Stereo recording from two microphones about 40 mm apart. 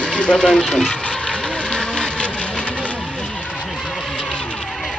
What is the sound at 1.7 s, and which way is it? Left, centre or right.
Motorboat, left.